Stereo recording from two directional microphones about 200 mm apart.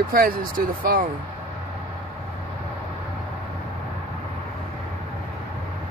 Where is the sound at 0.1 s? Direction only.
45° right (ahead or behind).